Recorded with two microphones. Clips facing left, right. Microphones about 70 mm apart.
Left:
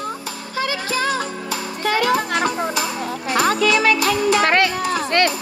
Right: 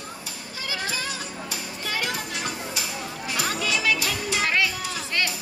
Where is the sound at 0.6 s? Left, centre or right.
Left.